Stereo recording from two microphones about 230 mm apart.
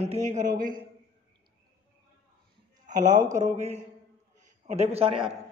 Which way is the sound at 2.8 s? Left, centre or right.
Right.